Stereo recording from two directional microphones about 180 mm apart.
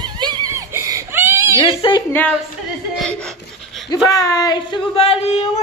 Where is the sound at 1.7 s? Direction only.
30° left (ahead or behind).